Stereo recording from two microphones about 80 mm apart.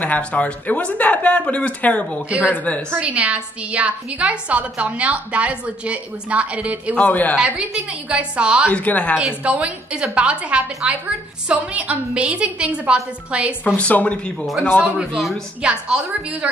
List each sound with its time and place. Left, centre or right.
0.0 s speech: centre
2.2 s a woman's voice: centre
2.5 s a woman's voice: centre
3.0 s a woman's voice: centre
7.0 s a woman's voice: left
7.3 s a woman's voice: centre
8.7 s speech: centre
9.4 s a woman's voice: centre
13.7 s speech: centre
15.0 s a woman's voice: centre